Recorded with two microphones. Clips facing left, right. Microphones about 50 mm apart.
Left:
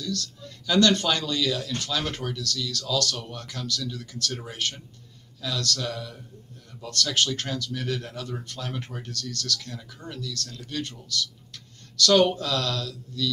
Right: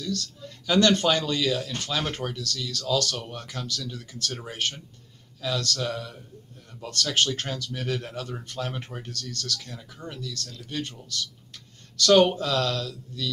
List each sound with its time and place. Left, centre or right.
0.7 s speech: right